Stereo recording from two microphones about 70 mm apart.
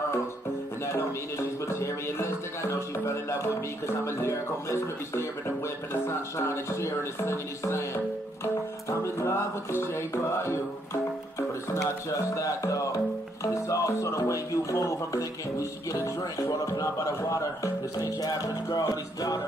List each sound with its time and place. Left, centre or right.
1.7 s speech: left
9.0 s speech: left
15.9 s music: left
16.8 s a man's voice: left
17.9 s music: left